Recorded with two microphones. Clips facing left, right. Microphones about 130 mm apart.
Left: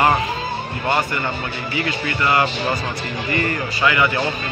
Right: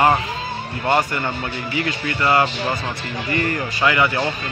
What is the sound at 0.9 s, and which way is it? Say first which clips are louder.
A man's voice: right 2 dB; 40° right (ahead or behind).